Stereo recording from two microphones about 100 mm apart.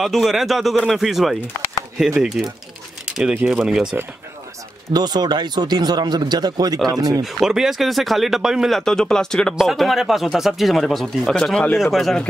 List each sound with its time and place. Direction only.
0.0 s speech: centre (ahead or behind)
3.4 s speech: 5° right (ahead or behind)
4.9 s speech: 45° right (ahead or behind)
7.2 s speech: 5° right (ahead or behind)